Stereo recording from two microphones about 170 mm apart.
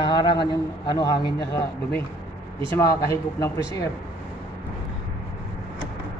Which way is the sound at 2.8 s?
20° left (ahead or behind).